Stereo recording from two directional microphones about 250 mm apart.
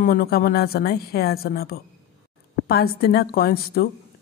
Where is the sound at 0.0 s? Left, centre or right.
Left.